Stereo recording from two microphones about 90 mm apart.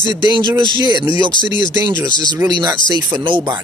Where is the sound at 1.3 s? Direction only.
55° left (ahead or behind).